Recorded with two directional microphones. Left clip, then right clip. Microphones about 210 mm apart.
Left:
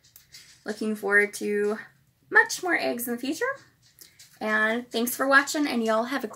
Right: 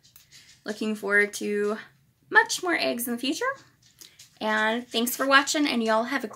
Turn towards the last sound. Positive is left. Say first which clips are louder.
# right 1 dB
turn(degrees=0)  # may be behind; listen again after turning